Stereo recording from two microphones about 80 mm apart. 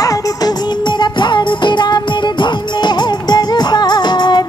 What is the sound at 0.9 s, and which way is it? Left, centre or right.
Music, left.